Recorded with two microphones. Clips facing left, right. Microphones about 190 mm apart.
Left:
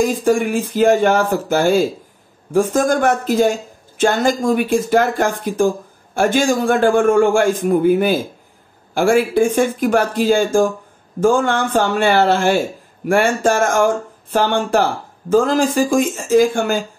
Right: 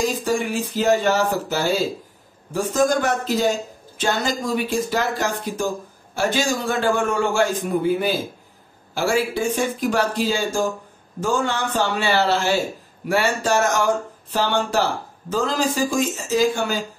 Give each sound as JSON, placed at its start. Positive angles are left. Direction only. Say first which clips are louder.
{"t": 0.0, "sound": "a man's voice", "louder": "left 6 dB", "side_deg": 50}